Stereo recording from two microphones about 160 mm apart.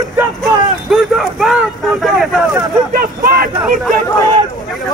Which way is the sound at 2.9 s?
65° right (ahead or behind).